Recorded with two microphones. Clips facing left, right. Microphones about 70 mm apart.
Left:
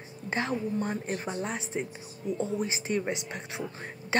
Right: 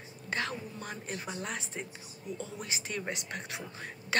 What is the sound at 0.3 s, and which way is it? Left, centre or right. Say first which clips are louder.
Speech: left 6 dB; left.